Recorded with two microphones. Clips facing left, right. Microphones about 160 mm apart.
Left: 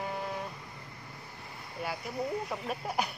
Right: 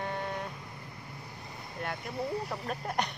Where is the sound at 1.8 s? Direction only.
5° left (ahead or behind).